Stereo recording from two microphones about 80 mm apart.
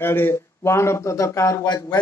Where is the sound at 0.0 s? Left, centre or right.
Left.